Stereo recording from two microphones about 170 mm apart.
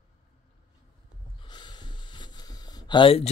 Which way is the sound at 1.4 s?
25° left (ahead or behind).